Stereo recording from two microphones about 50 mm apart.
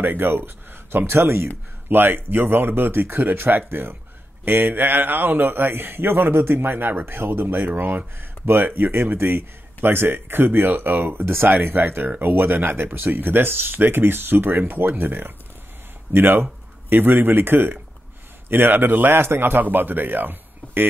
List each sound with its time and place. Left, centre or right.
0.0 s speech: right
1.0 s speech: right
1.9 s speech: right